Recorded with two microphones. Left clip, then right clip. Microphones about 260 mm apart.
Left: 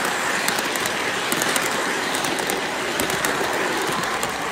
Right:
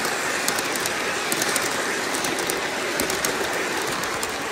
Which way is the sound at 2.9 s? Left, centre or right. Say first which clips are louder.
Left 3 dB; left.